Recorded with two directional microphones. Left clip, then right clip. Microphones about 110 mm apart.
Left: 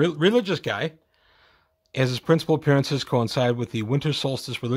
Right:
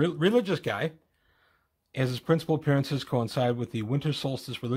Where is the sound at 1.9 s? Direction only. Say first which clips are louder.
Left 6 dB; 50° left (ahead or behind).